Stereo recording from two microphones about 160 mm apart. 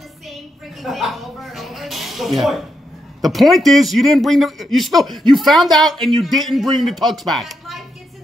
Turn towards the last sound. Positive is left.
turn(degrees=0)  # may be behind; listen again after turning